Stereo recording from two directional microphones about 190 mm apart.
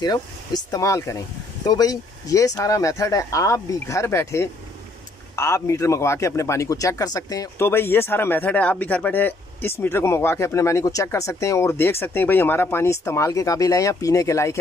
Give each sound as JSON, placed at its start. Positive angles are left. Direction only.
{"t": 0.0, "sound": "speech", "side_deg": 20}